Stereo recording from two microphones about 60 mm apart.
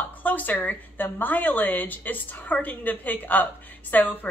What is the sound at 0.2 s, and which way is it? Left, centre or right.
A woman's voice, left.